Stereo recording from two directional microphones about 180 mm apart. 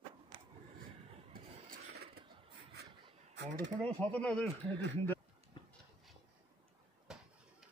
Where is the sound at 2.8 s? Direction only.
65° right (ahead or behind).